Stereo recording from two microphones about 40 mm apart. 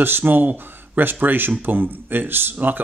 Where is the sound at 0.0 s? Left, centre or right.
Right.